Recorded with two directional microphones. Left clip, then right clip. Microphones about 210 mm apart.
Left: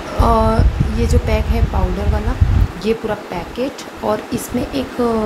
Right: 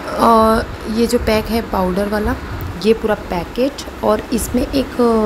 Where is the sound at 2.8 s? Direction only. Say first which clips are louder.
Right 5 dB; 20° right (ahead or behind).